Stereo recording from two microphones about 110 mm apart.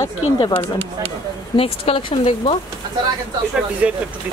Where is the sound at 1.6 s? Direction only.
55° left (ahead or behind).